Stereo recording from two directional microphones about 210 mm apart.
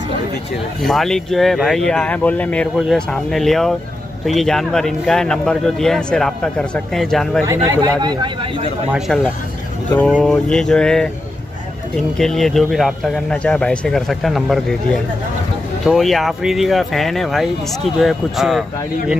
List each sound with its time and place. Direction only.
0.8 s speech: centre (ahead or behind)
7.4 s speech: 15° right (ahead or behind)
8.9 s speech: 5° right (ahead or behind)
12.2 s speech: centre (ahead or behind)